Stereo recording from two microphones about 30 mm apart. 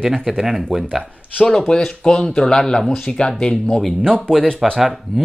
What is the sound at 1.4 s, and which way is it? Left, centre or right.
Speech, left.